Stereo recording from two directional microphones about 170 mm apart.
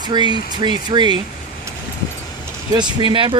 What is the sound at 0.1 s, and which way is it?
Speech, 25° right (ahead or behind).